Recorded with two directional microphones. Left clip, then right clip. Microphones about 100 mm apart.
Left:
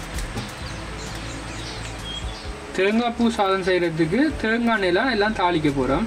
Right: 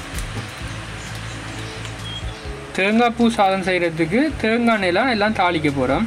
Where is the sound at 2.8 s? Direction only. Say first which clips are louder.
Right 4 dB; 45° right (ahead or behind).